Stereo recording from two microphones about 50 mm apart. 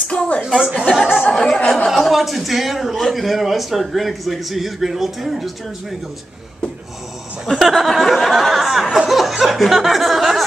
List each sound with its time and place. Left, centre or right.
0.1 s a sound: centre
0.9 s speech: centre
1.3 s a man's voice: centre
7.4 s a man's voice: centre